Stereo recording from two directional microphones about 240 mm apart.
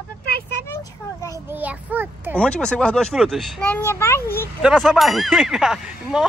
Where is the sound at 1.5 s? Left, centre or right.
Centre.